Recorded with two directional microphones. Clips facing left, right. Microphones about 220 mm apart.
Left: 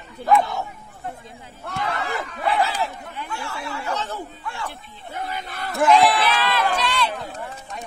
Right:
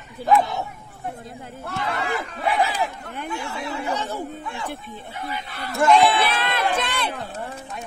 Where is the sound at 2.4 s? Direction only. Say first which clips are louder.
Even; 15° right (ahead or behind).